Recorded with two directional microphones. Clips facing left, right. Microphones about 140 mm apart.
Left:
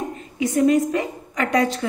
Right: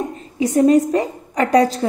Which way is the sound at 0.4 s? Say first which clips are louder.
Right 4 dB; 35° right (ahead or behind).